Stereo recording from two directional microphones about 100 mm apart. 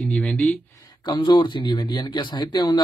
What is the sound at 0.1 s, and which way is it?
Speech, 10° left (ahead or behind).